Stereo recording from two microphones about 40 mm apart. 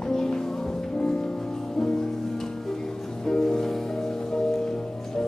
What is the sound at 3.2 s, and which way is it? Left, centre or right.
Music, centre.